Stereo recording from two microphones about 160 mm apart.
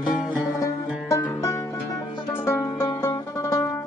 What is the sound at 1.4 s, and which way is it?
Music, 20° left (ahead or behind).